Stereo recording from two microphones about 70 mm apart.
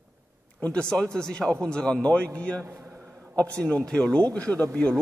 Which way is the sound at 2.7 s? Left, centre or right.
Right.